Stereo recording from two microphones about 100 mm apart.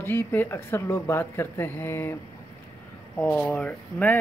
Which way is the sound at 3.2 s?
5° left (ahead or behind).